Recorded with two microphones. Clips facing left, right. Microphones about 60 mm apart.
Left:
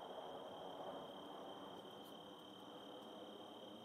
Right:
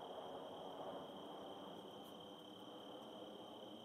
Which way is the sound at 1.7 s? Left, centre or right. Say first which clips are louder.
Right 1 dB; left.